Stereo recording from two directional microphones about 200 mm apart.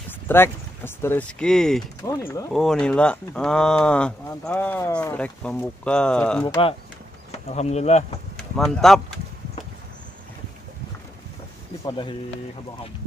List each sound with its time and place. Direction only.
0.3 s speech: 10° left (ahead or behind)
2.0 s speech: 15° left (ahead or behind)
2.5 s speech: centre (ahead or behind)
6.4 s speech: 20° left (ahead or behind)
7.4 s speech: 35° left (ahead or behind)
8.5 s speech: centre (ahead or behind)
11.8 s speech: 25° left (ahead or behind)